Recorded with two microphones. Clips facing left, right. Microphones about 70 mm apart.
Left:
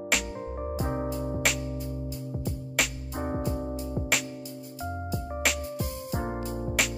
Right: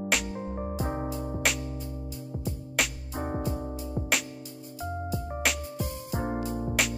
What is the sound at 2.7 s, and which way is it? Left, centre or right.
Music, centre.